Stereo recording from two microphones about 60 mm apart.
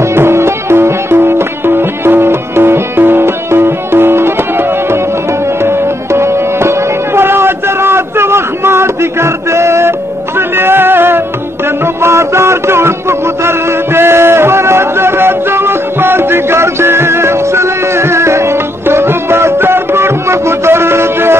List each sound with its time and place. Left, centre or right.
0.1 s music: right
7.2 s a sound: right
10.6 s music: right
12.0 s music: right